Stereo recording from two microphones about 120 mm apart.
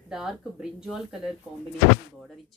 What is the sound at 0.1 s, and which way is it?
Speech, 5° right (ahead or behind).